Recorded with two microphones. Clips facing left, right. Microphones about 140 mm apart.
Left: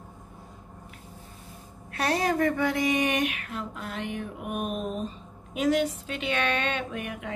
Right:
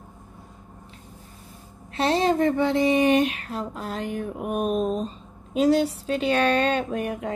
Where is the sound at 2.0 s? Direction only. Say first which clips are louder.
Right 4 dB; 25° right (ahead or behind).